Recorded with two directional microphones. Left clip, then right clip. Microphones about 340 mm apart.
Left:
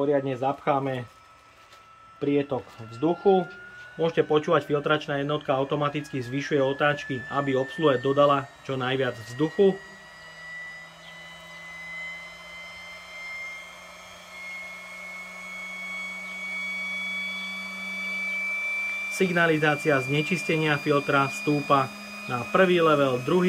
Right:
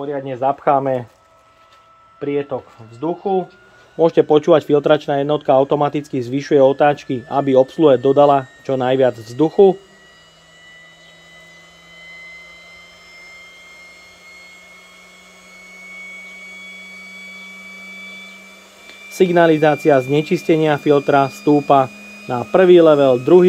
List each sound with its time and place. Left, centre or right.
0.0 s speech: centre
2.1 s speech: centre
19.1 s speech: centre